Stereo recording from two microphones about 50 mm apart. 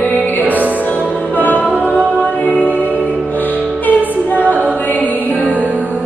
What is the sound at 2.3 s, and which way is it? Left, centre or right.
Music, left.